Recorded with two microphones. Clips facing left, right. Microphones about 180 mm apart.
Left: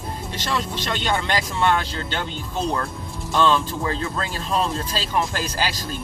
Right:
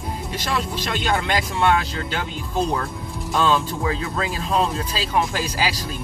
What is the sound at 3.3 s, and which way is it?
Speech, 5° right (ahead or behind).